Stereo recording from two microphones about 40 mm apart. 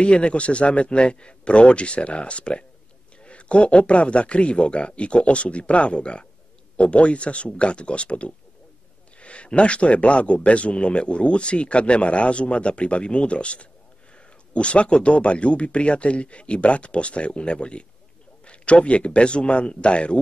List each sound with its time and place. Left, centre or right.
0.0 s a man's voice: left